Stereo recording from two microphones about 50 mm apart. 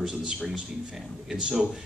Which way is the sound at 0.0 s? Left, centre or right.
Centre.